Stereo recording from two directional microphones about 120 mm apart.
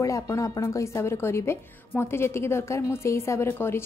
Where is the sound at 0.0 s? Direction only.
25° left (ahead or behind).